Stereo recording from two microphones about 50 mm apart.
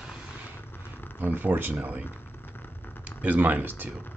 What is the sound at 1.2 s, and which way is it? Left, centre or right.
Speech, right.